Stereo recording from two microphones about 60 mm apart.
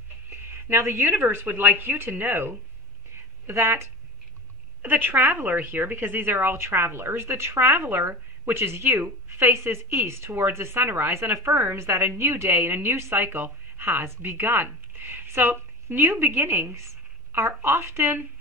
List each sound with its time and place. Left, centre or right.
0.3 s a woman's voice: right